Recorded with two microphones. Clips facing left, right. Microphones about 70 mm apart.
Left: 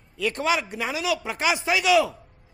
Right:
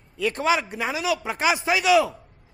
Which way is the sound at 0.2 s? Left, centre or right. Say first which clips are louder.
Right 2 dB; right.